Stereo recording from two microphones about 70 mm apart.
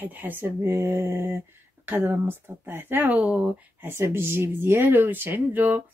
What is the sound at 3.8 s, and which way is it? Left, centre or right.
Speech, right.